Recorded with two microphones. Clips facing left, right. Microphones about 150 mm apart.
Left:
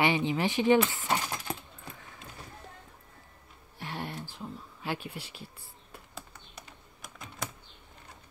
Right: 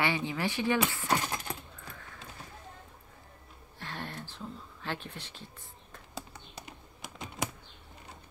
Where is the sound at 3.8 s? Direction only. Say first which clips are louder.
Left 3 dB; 15° left (ahead or behind).